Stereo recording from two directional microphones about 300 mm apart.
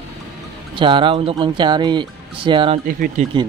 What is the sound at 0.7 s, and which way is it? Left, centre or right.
Speech, centre.